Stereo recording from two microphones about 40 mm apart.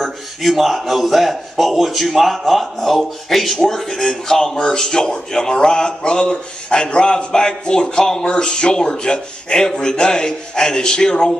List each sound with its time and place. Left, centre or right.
0.0 s a man's voice: centre